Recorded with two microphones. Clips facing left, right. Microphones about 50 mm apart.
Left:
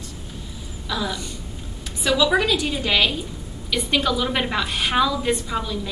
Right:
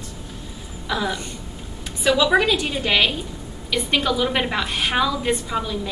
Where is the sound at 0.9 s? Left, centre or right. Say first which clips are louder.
Right 2 dB; right.